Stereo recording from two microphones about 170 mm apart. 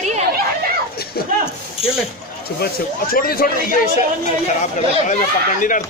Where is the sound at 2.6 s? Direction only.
60° left (ahead or behind).